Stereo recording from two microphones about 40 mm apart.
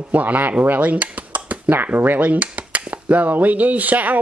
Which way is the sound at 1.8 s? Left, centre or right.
Right.